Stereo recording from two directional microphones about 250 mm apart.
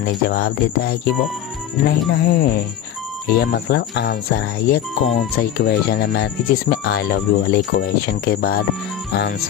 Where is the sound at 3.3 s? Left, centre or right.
Left.